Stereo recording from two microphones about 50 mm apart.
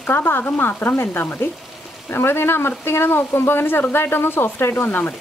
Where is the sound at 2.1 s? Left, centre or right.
Left.